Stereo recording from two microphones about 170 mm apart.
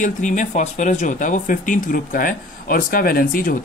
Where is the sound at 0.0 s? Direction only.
45° left (ahead or behind).